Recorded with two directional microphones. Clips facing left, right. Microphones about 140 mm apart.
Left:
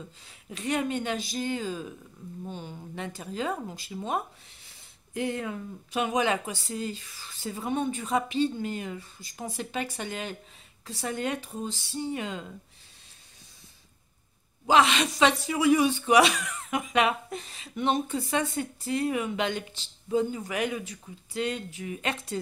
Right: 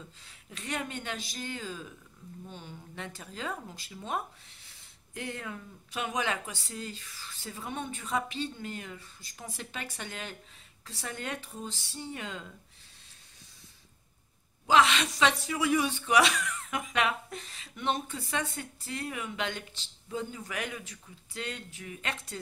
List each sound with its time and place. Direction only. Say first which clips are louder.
0.5 s speech: left 8 dB; 15° left (ahead or behind)
2.4 s speech: left 8 dB; 35° left (ahead or behind)
3.2 s speech: left 7 dB; 15° left (ahead or behind)
14.7 s speech: left 2 dB; 20° left (ahead or behind)